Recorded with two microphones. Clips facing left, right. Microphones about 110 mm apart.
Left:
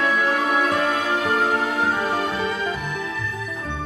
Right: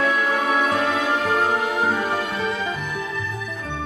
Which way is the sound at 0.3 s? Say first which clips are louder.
Even; centre (ahead or behind).